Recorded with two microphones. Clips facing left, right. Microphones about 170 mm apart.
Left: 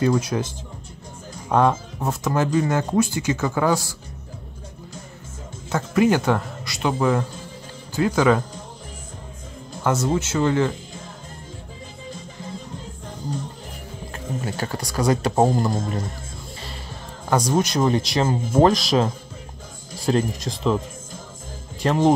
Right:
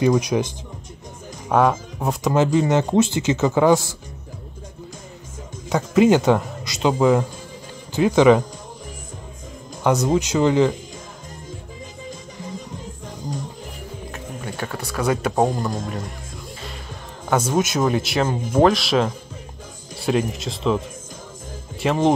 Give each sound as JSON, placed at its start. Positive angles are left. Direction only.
{"t": 0.0, "sound": "speech", "side_deg": -15}
{"t": 1.5, "sound": "speech", "side_deg": -10}
{"t": 5.7, "sound": "speech", "side_deg": -15}
{"t": 9.8, "sound": "speech", "side_deg": -15}
{"t": 14.1, "sound": "music", "side_deg": 0}
{"t": 15.0, "sound": "speech", "side_deg": -5}
{"t": 17.3, "sound": "speech", "side_deg": -5}
{"t": 20.1, "sound": "speech", "side_deg": -5}